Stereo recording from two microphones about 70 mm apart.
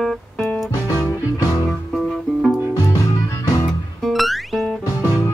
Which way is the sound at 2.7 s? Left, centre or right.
Left.